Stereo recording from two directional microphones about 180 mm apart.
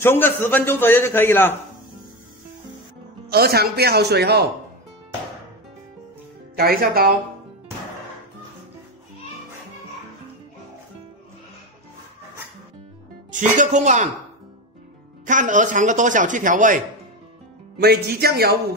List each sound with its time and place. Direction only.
0.0 s a man's voice: 10° left (ahead or behind)
3.3 s speech: 60° right (ahead or behind)
6.5 s speech: 55° right (ahead or behind)
13.3 s speech: 45° right (ahead or behind)
15.2 s speech: 45° right (ahead or behind)
17.7 s speech: 60° right (ahead or behind)